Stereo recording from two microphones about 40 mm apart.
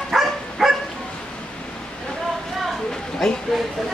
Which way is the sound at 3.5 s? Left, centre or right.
Centre.